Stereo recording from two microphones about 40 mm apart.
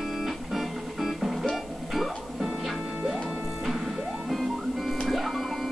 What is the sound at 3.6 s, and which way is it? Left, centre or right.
Music, centre.